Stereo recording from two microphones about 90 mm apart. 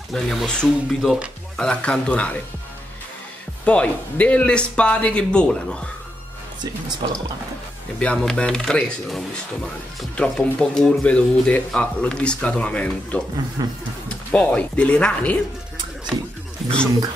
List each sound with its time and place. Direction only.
0.1 s speech: 5° left (ahead or behind)
0.7 s speech: 5° right (ahead or behind)
1.6 s speech: 10° left (ahead or behind)
3.6 s speech: 15° left (ahead or behind)
8.0 s speech: 10° left (ahead or behind)
13.6 s speech: 50° right (ahead or behind)
14.0 s speech: 15° left (ahead or behind)
16.1 s speech: 75° right (ahead or behind)